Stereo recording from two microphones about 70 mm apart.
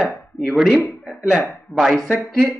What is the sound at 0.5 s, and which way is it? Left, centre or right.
Speech, centre.